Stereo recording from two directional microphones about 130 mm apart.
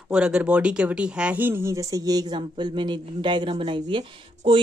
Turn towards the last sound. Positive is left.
turn(degrees=-40)  # may be behind; listen again after turning